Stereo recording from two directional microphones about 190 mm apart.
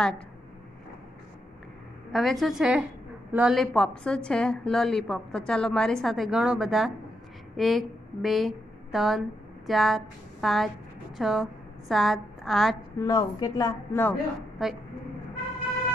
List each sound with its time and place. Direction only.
2.1 s a woman's voice: centre (ahead or behind)
13.0 s a woman's voice: 20° left (ahead or behind)
14.6 s a woman's voice: centre (ahead or behind)